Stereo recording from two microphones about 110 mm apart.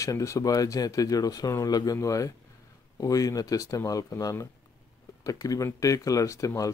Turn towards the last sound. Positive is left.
turn(degrees=30)  # may be behind; listen again after turning